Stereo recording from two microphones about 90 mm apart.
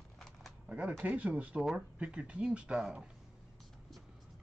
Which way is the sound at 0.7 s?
15° right (ahead or behind).